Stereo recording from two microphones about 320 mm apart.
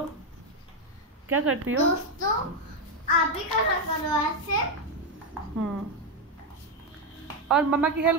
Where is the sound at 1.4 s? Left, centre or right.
Right.